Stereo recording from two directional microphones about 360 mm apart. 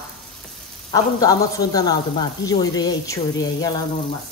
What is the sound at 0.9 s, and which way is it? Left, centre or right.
Speech, centre.